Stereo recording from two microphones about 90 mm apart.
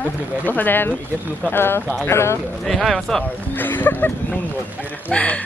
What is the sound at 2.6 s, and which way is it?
Speech, centre (ahead or behind).